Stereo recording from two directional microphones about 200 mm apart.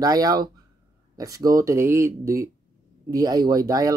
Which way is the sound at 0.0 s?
20° right (ahead or behind).